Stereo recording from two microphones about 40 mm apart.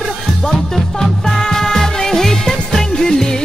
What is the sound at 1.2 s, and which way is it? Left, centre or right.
Music, centre.